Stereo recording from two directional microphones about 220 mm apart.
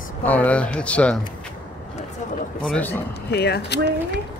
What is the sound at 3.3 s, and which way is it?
Speech, 45° left (ahead or behind).